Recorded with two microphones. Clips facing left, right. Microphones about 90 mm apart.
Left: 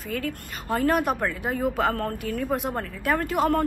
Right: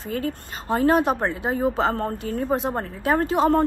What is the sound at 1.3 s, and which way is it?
Speech, 45° right (ahead or behind).